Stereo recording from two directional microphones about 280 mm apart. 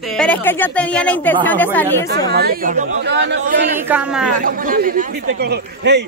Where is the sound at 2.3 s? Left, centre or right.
Right.